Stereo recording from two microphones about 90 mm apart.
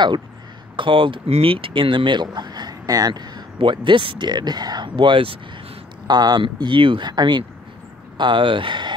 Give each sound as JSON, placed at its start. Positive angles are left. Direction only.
{"t": 0.7, "sound": "speech", "side_deg": -65}
{"t": 3.5, "sound": "speech", "side_deg": -65}
{"t": 6.0, "sound": "speech", "side_deg": -50}
{"t": 6.4, "sound": "speech", "side_deg": -65}